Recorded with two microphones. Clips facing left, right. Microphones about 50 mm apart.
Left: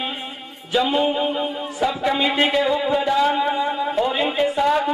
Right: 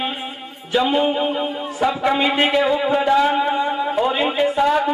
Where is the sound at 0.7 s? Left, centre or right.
Centre.